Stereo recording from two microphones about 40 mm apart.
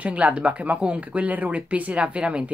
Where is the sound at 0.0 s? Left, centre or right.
Right.